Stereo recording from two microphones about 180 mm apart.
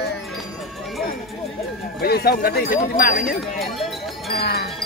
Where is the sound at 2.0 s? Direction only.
60° left (ahead or behind).